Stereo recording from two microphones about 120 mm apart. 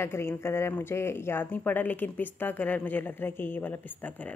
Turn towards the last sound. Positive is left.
turn(degrees=15)  # may be behind; listen again after turning